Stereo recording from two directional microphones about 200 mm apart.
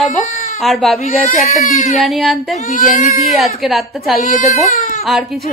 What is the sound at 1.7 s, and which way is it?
Speech, 40° left (ahead or behind).